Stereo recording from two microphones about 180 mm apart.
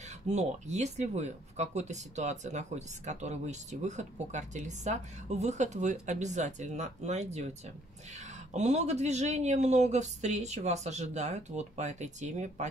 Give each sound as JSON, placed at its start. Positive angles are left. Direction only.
{"t": 0.3, "sound": "speech", "side_deg": -40}
{"t": 8.5, "sound": "speech", "side_deg": -40}